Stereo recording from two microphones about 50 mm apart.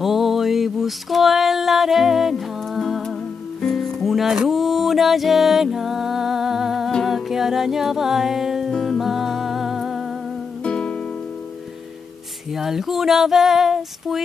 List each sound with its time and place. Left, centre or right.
0.0 s a sound: centre
3.6 s music: centre
10.6 s music: centre
12.5 s female singing: centre